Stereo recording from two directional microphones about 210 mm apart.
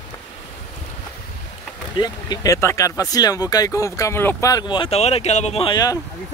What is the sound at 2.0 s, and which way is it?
Speech, 20° left (ahead or behind).